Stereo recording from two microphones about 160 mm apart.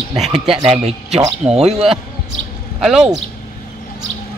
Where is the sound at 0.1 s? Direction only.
40° right (ahead or behind).